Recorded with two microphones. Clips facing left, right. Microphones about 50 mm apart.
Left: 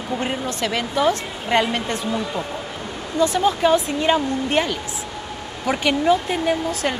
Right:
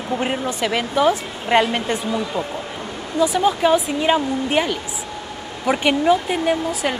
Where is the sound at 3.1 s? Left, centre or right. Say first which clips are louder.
Right 1 dB; centre.